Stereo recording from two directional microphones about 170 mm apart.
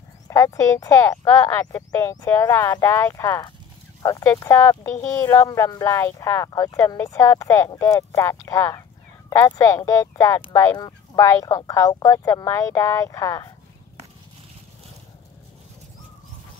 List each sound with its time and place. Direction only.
0.3 s speech: 20° left (ahead or behind)